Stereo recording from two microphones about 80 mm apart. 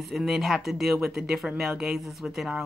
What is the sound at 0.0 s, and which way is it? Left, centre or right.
A woman's voice, centre.